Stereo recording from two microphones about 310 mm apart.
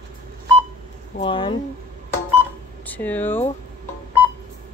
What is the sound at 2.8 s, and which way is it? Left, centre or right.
Speech, centre.